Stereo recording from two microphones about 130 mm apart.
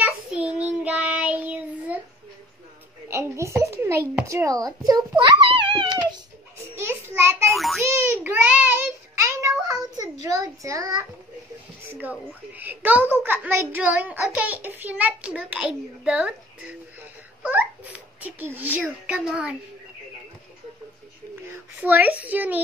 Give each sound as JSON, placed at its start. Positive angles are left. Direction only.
{"t": 0.0, "sound": "child singing", "side_deg": -10}
{"t": 3.1, "sound": "a child's voice", "side_deg": -20}
{"t": 5.2, "sound": "a child's voice", "side_deg": -40}
{"t": 6.7, "sound": "a sound", "side_deg": -20}
{"t": 7.4, "sound": "child singing", "side_deg": 0}
{"t": 7.8, "sound": "child singing", "side_deg": -20}
{"t": 10.2, "sound": "a child's voice", "side_deg": -25}
{"t": 11.9, "sound": "a child's voice", "side_deg": -15}
{"t": 17.4, "sound": "fowl", "side_deg": -10}
{"t": 18.8, "sound": "a child's voice", "side_deg": -5}
{"t": 21.7, "sound": "a child's voice", "side_deg": -15}